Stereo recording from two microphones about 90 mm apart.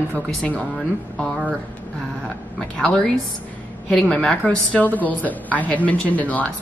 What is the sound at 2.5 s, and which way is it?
Speech, 10° left (ahead or behind).